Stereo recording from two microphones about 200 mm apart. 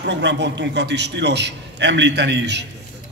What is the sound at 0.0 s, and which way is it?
A man's voice, 60° right (ahead or behind).